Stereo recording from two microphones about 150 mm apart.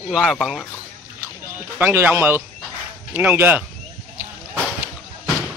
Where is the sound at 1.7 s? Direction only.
15° right (ahead or behind).